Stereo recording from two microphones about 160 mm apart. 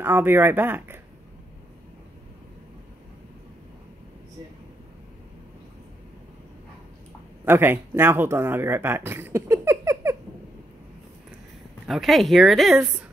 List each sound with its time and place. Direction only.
0.0 s speech: 15° right (ahead or behind)
7.4 s speech: 15° right (ahead or behind)
11.9 s speech: centre (ahead or behind)